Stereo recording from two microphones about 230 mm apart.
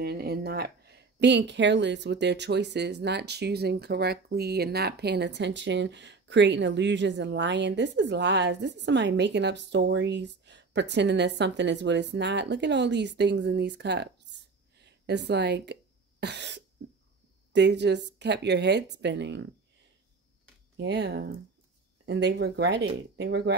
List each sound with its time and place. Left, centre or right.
0.0 s speech: right
20.7 s speech: right